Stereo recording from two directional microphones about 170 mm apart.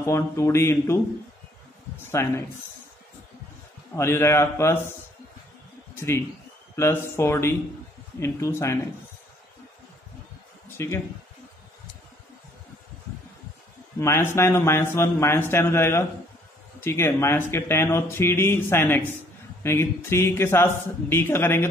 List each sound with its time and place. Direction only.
0.0 s speech: 15° left (ahead or behind)
2.0 s speech: 15° left (ahead or behind)
3.9 s speech: 15° left (ahead or behind)
5.9 s a man's voice: 15° left (ahead or behind)
10.8 s speech: 15° left (ahead or behind)
13.9 s speech: 15° left (ahead or behind)